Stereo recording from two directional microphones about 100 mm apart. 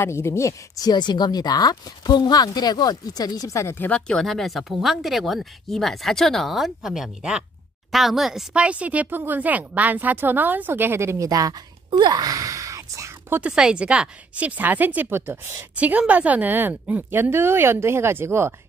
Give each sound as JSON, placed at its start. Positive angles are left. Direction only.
{"t": 0.0, "sound": "speech", "side_deg": 25}
{"t": 3.7, "sound": "speech", "side_deg": 20}
{"t": 4.1, "sound": "a woman's voice", "side_deg": 5}
{"t": 11.2, "sound": "a sound", "side_deg": -40}
{"t": 13.4, "sound": "a woman's voice", "side_deg": -10}